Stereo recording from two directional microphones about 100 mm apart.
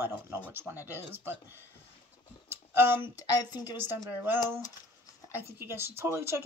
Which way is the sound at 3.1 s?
40° left (ahead or behind).